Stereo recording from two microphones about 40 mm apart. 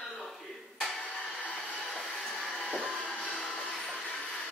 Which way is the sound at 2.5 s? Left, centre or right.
Centre.